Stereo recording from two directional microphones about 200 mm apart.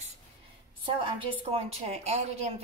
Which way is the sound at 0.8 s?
30° right (ahead or behind).